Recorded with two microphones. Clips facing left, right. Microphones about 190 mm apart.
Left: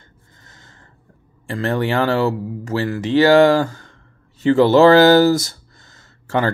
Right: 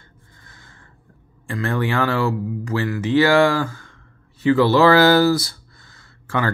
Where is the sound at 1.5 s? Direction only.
35° left (ahead or behind).